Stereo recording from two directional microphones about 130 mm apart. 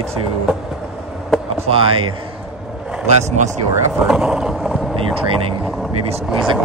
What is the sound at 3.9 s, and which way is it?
Speech, 5° right (ahead or behind).